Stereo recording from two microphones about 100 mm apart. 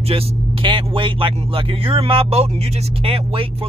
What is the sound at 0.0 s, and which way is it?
Speech, 70° right (ahead or behind).